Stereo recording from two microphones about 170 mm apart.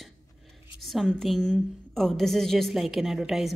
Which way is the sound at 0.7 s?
Centre (ahead or behind).